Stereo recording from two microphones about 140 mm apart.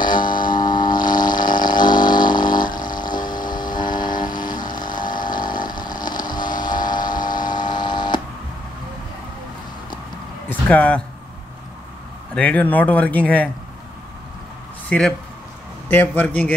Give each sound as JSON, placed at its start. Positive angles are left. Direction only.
{"t": 0.0, "sound": "a sound", "side_deg": 35}
{"t": 3.8, "sound": "vehicle", "side_deg": 30}
{"t": 5.2, "sound": "chainsaw", "side_deg": 30}
{"t": 5.7, "sound": "vehicle", "side_deg": 30}
{"t": 10.5, "sound": "a sound", "side_deg": 10}
{"t": 12.4, "sound": "speech", "side_deg": 10}
{"t": 14.9, "sound": "speech", "side_deg": 5}